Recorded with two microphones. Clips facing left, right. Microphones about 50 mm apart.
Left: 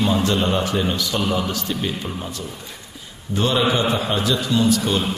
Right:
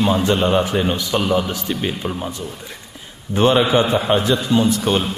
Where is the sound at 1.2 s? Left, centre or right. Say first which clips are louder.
Right 4 dB; centre.